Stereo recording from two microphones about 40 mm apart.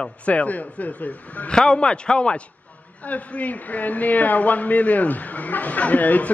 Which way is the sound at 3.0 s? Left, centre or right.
Left.